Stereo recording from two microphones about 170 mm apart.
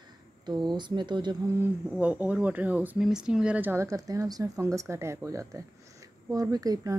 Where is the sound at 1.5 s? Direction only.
10° right (ahead or behind).